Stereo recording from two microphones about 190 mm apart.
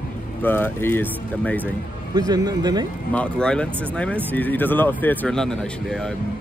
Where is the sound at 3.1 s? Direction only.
5° left (ahead or behind).